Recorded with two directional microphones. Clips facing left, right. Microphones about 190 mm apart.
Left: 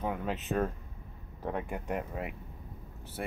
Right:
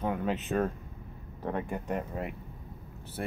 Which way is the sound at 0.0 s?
Centre (ahead or behind).